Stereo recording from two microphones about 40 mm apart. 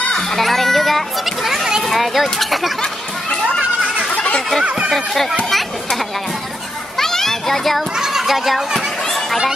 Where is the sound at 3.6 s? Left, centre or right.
Right.